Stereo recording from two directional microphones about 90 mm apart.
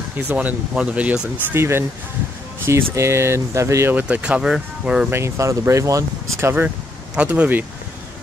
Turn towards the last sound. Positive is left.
turn(degrees=-20)  # may be behind; listen again after turning